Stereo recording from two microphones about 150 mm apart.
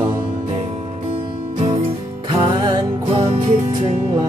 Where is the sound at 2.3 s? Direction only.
30° right (ahead or behind).